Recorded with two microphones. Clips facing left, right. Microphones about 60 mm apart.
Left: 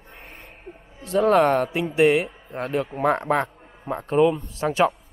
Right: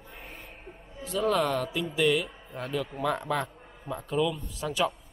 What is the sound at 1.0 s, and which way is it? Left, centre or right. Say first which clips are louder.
Speech: left 9 dB; left.